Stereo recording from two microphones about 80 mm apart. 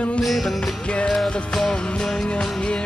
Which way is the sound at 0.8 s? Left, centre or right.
Centre.